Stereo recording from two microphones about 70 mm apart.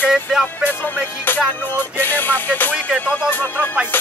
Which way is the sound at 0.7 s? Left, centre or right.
Left.